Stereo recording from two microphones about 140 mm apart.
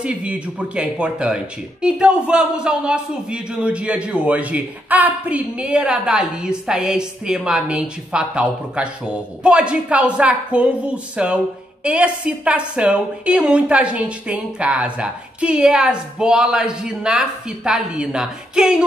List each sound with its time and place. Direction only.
0.0 s speech: 10° right (ahead or behind)